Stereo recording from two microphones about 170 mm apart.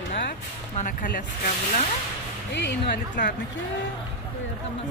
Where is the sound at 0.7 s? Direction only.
55° left (ahead or behind).